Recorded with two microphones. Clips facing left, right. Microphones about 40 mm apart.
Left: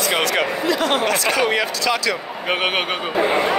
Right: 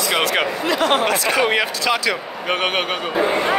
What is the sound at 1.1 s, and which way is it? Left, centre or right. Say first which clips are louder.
Speech: right 1 dB; centre.